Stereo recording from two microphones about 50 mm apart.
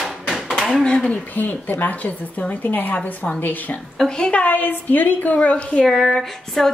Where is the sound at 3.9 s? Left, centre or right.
Centre.